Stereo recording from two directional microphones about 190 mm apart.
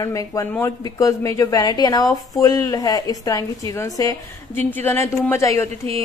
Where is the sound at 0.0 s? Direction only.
15° left (ahead or behind).